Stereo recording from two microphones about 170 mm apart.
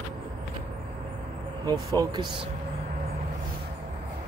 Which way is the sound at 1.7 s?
25° right (ahead or behind).